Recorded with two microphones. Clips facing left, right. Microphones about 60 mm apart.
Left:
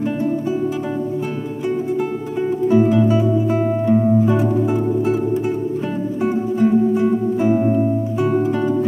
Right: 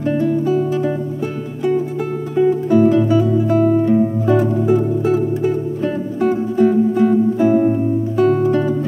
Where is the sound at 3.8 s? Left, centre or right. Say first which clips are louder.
Even; centre.